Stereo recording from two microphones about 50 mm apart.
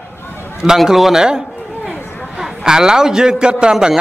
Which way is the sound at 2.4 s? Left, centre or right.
Centre.